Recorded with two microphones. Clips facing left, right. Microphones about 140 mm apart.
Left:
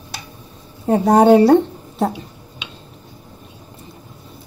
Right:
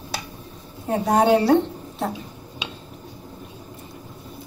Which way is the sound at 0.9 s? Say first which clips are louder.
Left 7 dB; 40° left (ahead or behind).